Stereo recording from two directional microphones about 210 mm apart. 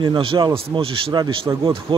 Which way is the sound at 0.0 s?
25° right (ahead or behind).